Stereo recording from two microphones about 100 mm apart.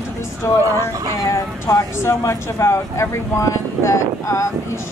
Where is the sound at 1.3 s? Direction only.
30° left (ahead or behind).